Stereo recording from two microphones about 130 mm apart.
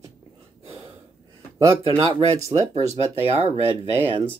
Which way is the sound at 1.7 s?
45° right (ahead or behind).